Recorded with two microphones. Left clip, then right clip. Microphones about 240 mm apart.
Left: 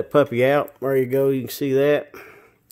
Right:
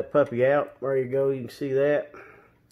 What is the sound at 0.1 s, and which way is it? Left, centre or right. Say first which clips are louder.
Speech: left 4 dB; left.